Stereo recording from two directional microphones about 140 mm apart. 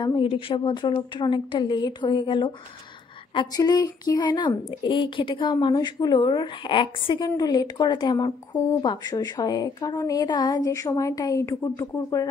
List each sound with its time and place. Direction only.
0.0 s a woman's voice: 35° left (ahead or behind)